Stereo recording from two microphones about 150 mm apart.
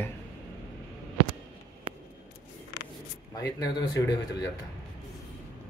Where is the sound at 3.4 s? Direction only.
20° left (ahead or behind).